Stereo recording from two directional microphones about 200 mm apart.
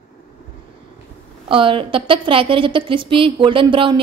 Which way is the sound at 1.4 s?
25° right (ahead or behind).